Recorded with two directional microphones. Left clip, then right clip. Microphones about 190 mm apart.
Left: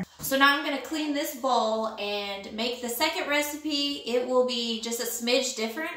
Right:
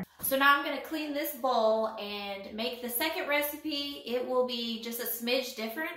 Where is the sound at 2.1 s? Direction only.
5° left (ahead or behind).